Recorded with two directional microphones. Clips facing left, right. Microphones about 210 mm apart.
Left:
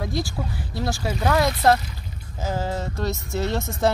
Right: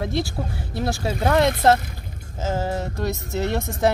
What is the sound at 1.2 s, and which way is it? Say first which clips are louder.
Speech: right 2 dB; 25° right (ahead or behind).